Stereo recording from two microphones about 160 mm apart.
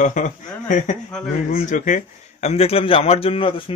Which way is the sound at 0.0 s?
50° left (ahead or behind).